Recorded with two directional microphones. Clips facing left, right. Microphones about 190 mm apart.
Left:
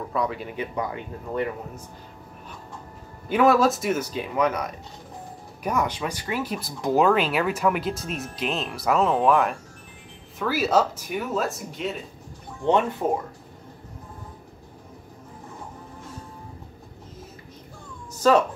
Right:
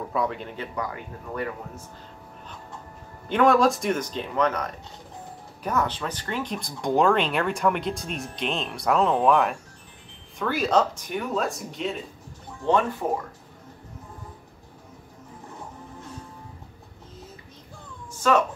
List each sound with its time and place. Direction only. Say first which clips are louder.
0.1 s speech: left 1 dB; centre (ahead or behind)
0.7 s speech: left 3 dB; 25° left (ahead or behind)
3.3 s speech: left 1 dB; 5° left (ahead or behind)
13.0 s speech: left 2 dB; 20° left (ahead or behind)
18.1 s a sound: left 3 dB; 35° left (ahead or behind)